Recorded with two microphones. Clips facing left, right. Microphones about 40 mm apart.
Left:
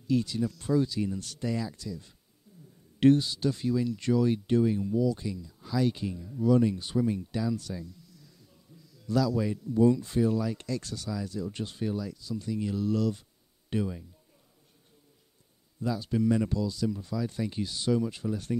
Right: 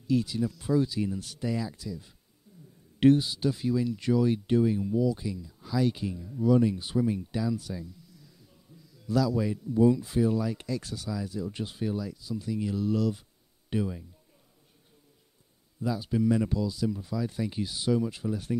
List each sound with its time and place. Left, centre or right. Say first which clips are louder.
0.0 s speech: right 1 dB; centre
15.8 s speech: right 1 dB; centre